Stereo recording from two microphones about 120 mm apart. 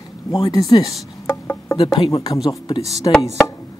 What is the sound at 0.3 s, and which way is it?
Speech, 35° left (ahead or behind).